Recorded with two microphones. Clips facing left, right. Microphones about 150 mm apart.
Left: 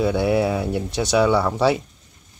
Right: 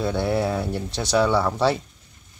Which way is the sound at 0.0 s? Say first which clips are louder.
Left 4 dB; 5° left (ahead or behind).